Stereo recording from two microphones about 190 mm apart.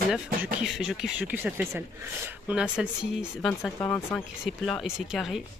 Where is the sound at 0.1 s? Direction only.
5° right (ahead or behind).